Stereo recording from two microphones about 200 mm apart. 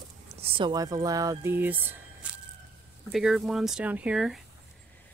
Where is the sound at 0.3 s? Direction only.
25° right (ahead or behind); by 4.4 s 5° right (ahead or behind).